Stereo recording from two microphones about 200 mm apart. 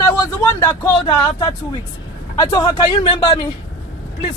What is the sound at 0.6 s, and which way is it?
Speech, 20° left (ahead or behind).